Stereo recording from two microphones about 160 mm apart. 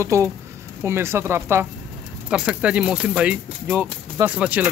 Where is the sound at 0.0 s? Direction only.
20° right (ahead or behind).